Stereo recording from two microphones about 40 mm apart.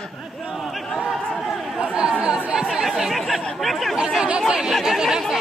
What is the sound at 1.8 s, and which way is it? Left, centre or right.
Chatter, right.